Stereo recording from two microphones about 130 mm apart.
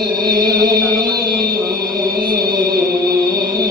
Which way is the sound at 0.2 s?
30° right (ahead or behind).